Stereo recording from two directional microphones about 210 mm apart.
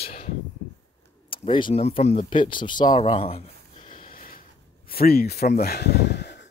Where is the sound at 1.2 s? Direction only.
25° left (ahead or behind); by 6.4 s 55° left (ahead or behind).